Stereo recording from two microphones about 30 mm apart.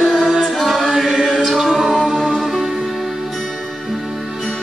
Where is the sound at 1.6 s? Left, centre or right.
Centre.